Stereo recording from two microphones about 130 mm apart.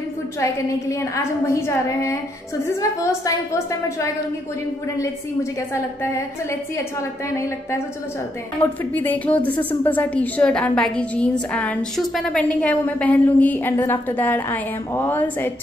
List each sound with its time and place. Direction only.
0.4 s a woman's voice: 25° left (ahead or behind)
4.9 s a woman's voice: 25° left (ahead or behind)
8.9 s a woman's voice: 15° left (ahead or behind)